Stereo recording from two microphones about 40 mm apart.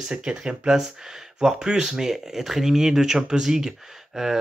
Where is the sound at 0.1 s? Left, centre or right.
Right.